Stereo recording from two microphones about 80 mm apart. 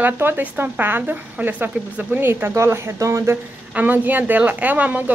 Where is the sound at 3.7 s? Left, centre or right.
Right.